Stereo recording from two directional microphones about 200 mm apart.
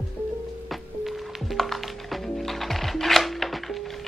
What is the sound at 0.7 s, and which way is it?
Music, centre (ahead or behind).